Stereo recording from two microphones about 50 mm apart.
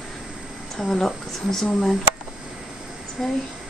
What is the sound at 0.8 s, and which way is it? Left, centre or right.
Speech, centre.